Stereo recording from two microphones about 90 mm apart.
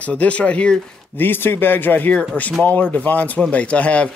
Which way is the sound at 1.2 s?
25° left (ahead or behind).